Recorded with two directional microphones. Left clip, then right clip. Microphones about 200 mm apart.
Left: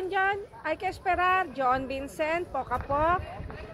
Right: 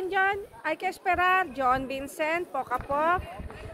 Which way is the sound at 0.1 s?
20° right (ahead or behind).